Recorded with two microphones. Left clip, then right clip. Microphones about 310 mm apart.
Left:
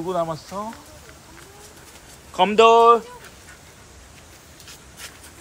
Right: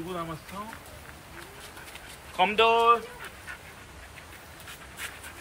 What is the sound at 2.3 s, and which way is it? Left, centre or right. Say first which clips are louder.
Speech: left 8 dB; centre.